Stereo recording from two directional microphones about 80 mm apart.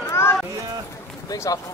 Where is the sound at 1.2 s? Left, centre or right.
Left.